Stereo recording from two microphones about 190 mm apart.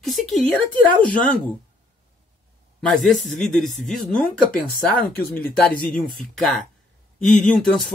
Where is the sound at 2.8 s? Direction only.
Centre (ahead or behind).